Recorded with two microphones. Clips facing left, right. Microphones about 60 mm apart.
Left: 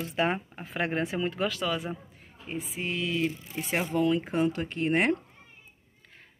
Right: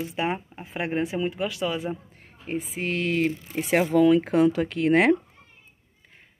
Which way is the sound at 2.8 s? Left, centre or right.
Right.